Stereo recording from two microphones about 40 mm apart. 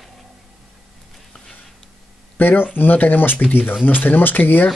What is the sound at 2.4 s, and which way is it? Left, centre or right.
A man's voice, left.